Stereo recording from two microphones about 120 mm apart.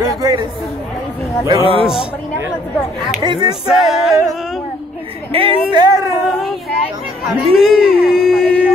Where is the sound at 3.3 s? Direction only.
35° right (ahead or behind).